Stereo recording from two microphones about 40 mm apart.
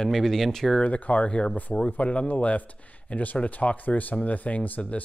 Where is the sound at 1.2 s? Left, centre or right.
Left.